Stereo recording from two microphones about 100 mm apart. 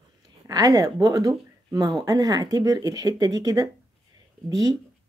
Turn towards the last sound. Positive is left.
turn(degrees=-35)  # may be behind; listen again after turning